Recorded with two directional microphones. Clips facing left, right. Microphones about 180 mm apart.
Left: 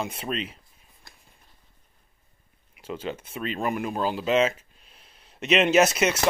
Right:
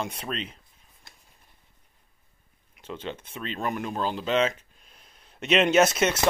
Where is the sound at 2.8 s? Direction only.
10° left (ahead or behind).